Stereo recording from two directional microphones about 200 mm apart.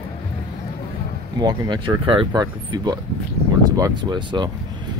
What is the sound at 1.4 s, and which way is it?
Speech, 20° right (ahead or behind).